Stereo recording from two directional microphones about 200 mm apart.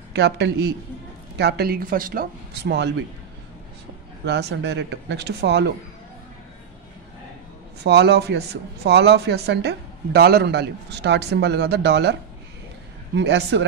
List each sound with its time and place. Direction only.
0.1 s speech: 55° right (ahead or behind)
4.3 s speech: 60° right (ahead or behind)
7.8 s speech: 55° right (ahead or behind)